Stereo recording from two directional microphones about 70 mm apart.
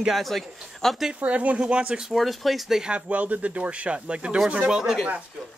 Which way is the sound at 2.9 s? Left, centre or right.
Right.